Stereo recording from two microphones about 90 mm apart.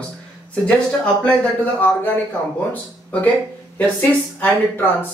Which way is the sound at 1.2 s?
15° left (ahead or behind).